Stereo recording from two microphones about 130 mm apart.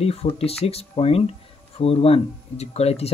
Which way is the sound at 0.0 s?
50° left (ahead or behind).